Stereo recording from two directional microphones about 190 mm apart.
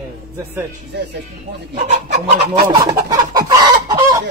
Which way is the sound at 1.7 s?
40° right (ahead or behind).